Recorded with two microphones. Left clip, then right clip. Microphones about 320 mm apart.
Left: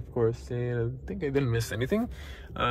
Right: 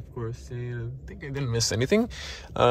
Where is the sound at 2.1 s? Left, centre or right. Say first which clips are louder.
Right 8 dB; right.